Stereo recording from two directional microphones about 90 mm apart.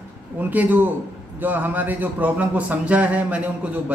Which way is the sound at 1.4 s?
20° right (ahead or behind).